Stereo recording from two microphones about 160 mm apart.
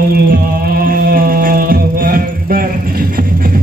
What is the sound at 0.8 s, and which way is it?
Music, 65° right (ahead or behind).